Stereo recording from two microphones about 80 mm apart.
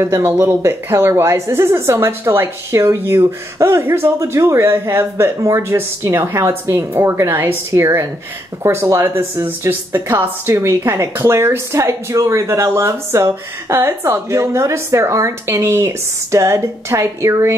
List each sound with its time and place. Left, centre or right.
0.0 s speech: right